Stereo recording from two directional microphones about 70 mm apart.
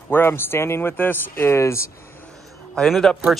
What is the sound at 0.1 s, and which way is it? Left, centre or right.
Speech, left.